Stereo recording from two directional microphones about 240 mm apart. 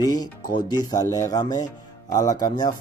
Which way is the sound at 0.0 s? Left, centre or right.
Centre.